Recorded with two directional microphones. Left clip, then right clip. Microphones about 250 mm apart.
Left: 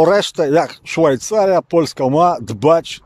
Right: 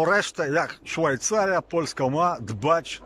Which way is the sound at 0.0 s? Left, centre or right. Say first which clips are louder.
Left 9 dB; centre.